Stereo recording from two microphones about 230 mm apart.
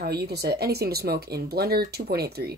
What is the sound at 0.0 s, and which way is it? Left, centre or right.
Speech, right.